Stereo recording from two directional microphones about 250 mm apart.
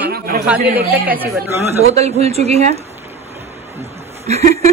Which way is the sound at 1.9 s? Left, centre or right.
Right.